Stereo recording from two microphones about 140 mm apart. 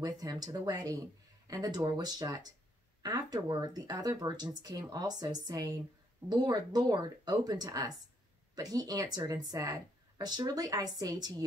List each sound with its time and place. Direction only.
0.0 s speech: 30° right (ahead or behind)